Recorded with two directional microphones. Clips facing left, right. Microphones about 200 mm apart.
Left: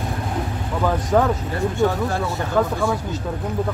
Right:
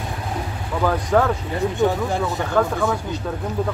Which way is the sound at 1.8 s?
15° right (ahead or behind).